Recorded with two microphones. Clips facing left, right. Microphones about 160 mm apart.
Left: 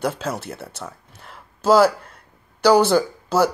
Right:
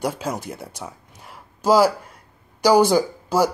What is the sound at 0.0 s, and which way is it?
Speech, 10° right (ahead or behind).